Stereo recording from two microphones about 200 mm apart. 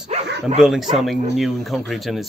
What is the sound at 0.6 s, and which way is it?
Speech, centre (ahead or behind).